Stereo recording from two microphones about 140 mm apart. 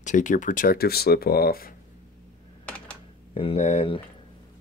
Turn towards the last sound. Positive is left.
turn(degrees=40)  # may be behind; listen again after turning